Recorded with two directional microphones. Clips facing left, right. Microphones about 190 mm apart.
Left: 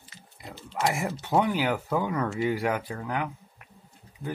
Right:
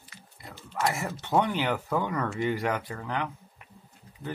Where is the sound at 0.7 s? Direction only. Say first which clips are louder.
Left 2 dB; 15° left (ahead or behind).